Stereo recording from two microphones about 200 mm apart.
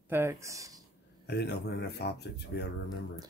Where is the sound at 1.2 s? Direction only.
55° left (ahead or behind).